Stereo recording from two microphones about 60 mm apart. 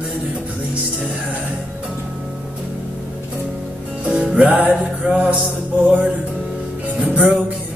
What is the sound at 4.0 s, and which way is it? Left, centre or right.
Music, centre.